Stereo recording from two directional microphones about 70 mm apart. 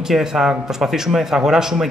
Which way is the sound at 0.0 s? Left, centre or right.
Centre.